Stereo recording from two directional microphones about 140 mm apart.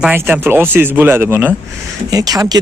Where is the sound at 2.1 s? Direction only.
25° right (ahead or behind).